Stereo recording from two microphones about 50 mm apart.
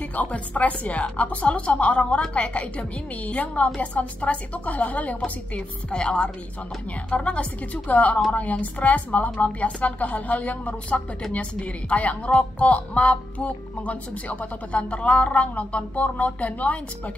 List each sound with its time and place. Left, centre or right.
0.1 s a woman's voice: left